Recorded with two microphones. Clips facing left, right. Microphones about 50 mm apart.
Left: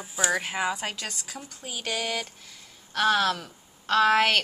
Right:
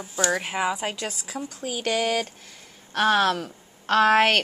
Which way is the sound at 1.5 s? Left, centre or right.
Right.